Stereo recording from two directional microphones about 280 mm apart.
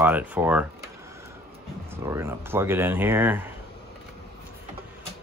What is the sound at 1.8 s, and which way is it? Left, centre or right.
Speech, centre.